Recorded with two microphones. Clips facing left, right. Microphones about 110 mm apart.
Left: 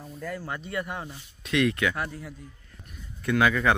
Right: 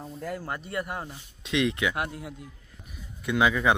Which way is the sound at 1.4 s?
20° right (ahead or behind).